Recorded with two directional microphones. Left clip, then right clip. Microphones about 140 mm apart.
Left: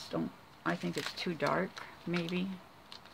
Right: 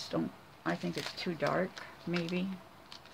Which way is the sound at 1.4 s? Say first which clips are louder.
Even; 10° left (ahead or behind).